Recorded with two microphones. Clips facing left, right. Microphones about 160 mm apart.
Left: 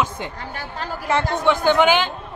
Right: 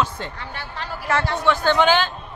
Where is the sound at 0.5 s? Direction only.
45° left (ahead or behind).